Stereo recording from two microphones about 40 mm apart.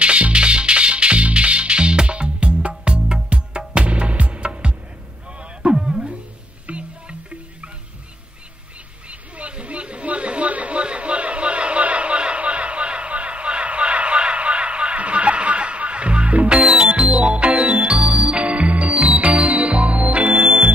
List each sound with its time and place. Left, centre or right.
0.0 s music: right
6.7 s music: right
9.4 s a sound: right
17.2 s music: right